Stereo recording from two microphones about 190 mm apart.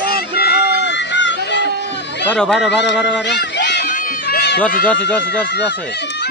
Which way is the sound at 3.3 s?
65° left (ahead or behind).